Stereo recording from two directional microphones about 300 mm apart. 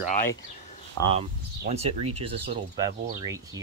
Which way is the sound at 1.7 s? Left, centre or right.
Right.